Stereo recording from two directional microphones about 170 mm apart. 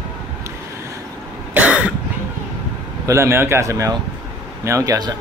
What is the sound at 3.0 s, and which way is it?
A man's voice, 15° right (ahead or behind).